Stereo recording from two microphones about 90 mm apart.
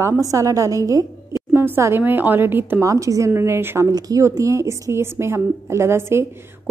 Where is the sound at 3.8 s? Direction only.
40° right (ahead or behind).